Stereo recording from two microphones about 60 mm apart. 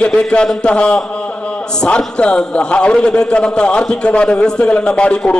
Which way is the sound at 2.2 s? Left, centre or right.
Centre.